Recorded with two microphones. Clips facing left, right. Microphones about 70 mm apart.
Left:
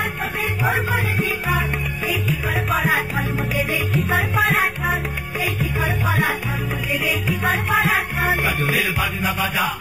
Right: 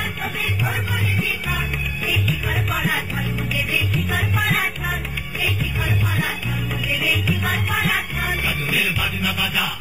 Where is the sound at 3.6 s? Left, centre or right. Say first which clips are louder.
Left 2 dB; left.